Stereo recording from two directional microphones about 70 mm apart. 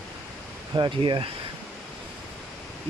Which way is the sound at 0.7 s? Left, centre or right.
Right.